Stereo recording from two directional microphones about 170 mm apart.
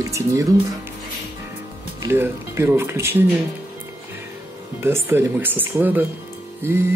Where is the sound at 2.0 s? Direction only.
15° right (ahead or behind).